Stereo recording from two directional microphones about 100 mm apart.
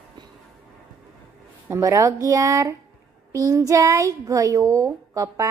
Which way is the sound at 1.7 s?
30° right (ahead or behind).